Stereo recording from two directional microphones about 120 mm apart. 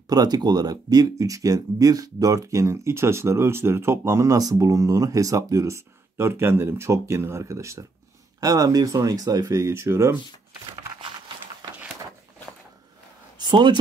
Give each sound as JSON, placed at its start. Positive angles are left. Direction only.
{"t": 0.1, "sound": "speech", "side_deg": -35}
{"t": 13.4, "sound": "speech", "side_deg": -40}